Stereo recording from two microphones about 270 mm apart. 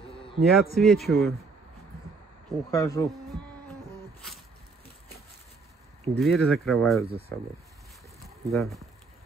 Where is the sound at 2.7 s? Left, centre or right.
Centre.